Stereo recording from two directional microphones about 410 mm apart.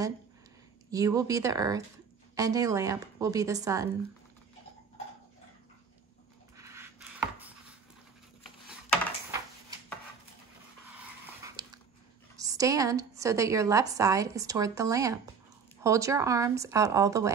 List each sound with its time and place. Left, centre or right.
0.9 s a woman's voice: centre
6.5 s chopping: centre
10.9 s dog: centre
12.4 s a woman's voice: centre